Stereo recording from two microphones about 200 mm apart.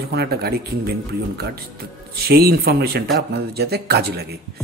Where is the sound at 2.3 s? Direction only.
50° right (ahead or behind).